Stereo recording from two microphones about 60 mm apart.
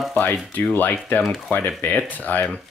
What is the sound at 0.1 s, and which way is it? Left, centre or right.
Speech, left.